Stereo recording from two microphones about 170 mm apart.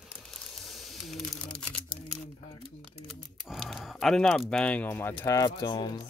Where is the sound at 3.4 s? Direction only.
Centre (ahead or behind); by 6.0 s 30° left (ahead or behind).